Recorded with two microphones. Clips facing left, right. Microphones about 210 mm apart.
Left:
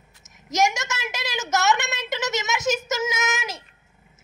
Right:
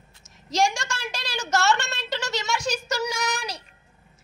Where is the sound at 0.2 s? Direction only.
20° left (ahead or behind).